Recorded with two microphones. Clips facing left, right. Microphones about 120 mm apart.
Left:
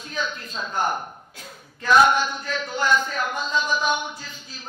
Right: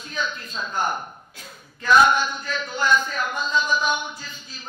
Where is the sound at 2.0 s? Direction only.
60° left (ahead or behind).